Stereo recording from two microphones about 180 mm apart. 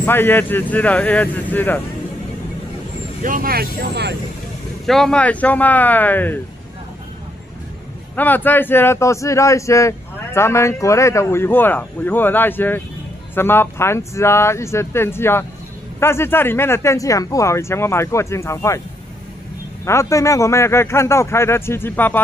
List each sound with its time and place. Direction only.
0.0 s speech: 10° left (ahead or behind)
3.2 s speech: 50° right (ahead or behind); by 4.2 s 70° right (ahead or behind)
4.8 s speech: centre (ahead or behind)
8.2 s speech: 10° left (ahead or behind)
19.8 s speech: 15° left (ahead or behind)